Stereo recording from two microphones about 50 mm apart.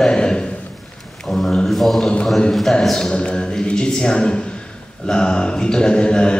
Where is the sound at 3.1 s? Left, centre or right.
Left.